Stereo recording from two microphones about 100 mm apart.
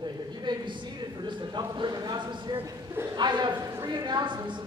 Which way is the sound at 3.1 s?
45° right (ahead or behind).